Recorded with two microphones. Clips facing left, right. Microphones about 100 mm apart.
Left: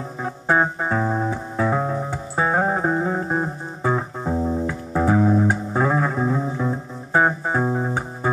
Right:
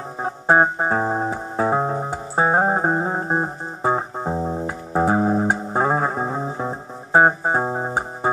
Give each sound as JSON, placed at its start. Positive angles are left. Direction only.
{"t": 0.2, "sound": "music", "side_deg": -30}